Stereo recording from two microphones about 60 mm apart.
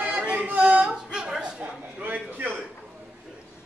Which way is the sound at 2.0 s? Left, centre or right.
Right.